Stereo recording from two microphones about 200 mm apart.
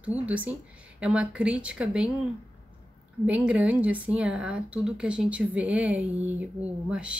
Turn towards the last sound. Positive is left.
turn(degrees=-5)  # may be behind; listen again after turning